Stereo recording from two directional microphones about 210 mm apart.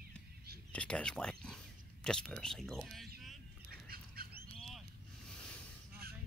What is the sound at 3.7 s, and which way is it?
Bird, 45° right (ahead or behind).